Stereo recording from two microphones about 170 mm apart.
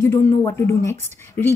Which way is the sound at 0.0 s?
15° left (ahead or behind).